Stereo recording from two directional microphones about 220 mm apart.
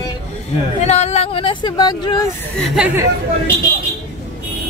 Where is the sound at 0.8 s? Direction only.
30° left (ahead or behind).